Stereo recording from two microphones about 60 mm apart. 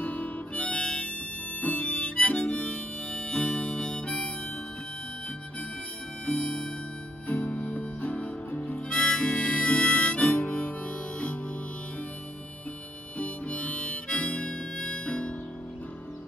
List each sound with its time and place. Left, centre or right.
0.0 s harmonica: left
1.6 s harmonica: left
6.2 s music: centre
7.2 s music: left
13.2 s harmonica: left